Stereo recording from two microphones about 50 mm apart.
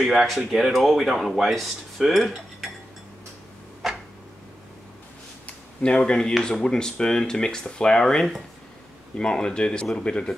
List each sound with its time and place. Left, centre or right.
0.0 s speech: centre
5.8 s speech: left